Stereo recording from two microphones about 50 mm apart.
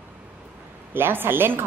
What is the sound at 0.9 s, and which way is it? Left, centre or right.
Speech, right.